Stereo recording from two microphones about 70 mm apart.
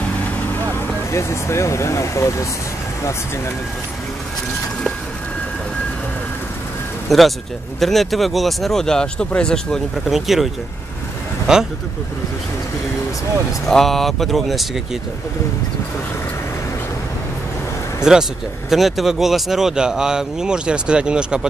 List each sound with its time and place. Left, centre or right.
0.7 s speech: left
7.1 s speech: centre
10.0 s speech: centre
13.7 s speech: centre
18.1 s speech: centre